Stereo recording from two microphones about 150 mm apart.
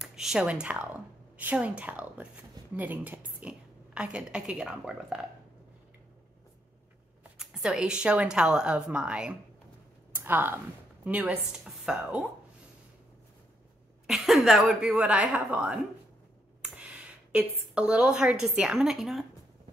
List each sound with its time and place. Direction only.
0.0 s speech: 5° right (ahead or behind)
7.3 s speech: 5° right (ahead or behind)
14.0 s speech: centre (ahead or behind)